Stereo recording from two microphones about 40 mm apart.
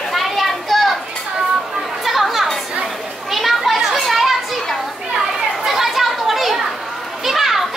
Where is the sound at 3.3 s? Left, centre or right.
Centre.